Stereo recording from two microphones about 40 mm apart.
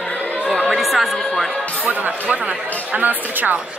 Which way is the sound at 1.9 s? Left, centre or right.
Right.